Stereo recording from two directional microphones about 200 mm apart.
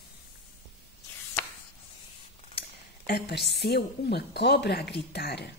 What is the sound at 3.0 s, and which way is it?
A woman's voice, 50° left (ahead or behind).